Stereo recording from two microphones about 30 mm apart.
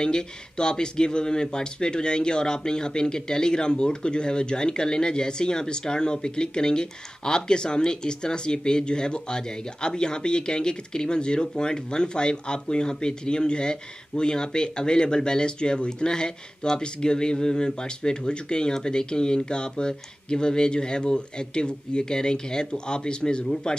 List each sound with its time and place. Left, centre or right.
0.0 s speech: left